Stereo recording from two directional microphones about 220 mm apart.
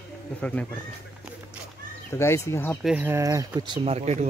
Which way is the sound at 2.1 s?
10° left (ahead or behind).